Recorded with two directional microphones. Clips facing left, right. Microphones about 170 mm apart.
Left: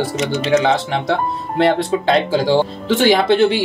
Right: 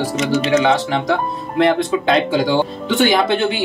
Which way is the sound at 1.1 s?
30° left (ahead or behind).